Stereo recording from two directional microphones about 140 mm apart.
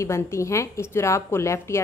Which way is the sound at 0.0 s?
20° left (ahead or behind).